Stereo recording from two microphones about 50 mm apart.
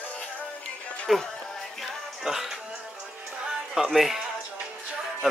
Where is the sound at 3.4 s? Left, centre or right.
Centre.